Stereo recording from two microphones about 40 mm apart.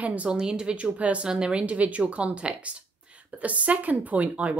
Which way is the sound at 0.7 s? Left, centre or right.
Right.